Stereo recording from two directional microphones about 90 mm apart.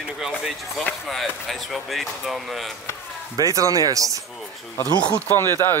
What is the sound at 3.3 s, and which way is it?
Speech, 35° right (ahead or behind).